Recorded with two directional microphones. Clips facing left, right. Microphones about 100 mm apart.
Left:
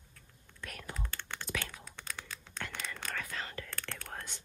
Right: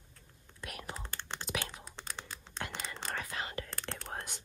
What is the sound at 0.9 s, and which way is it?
Computer keyboard, 20° right (ahead or behind).